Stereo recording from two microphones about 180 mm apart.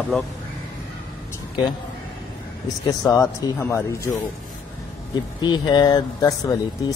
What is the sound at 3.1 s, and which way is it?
Speech, 15° left (ahead or behind).